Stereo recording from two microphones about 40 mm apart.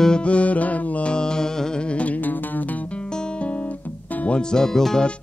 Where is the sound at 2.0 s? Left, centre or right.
Left.